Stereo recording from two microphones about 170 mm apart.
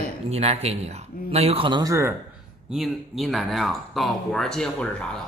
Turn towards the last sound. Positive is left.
turn(degrees=5)  # may be behind; listen again after turning